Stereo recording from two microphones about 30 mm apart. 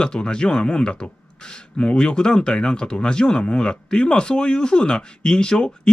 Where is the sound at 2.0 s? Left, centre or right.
Left.